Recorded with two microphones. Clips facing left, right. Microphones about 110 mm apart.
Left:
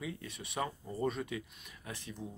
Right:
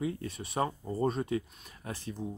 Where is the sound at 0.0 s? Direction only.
40° right (ahead or behind).